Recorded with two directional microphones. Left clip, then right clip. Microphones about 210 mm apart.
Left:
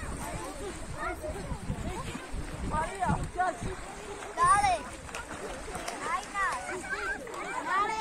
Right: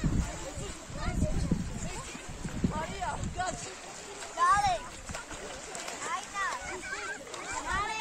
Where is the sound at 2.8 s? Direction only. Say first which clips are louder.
Left 7 dB; 45° right (ahead or behind).